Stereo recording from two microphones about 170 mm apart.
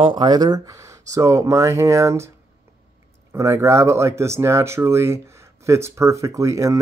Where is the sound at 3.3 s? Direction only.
15° right (ahead or behind).